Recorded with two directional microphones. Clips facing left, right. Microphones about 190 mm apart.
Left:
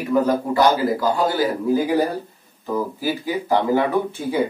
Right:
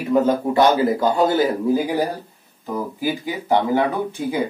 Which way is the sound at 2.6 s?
15° right (ahead or behind).